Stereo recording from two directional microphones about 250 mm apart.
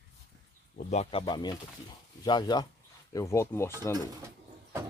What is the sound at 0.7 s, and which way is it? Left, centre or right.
Speech, left.